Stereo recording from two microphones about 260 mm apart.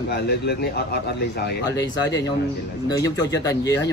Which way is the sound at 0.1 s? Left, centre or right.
Left.